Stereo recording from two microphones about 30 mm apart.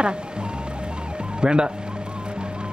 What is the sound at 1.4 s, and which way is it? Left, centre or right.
Speech, right.